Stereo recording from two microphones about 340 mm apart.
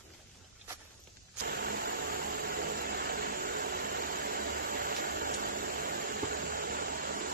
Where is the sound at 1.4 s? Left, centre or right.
Right.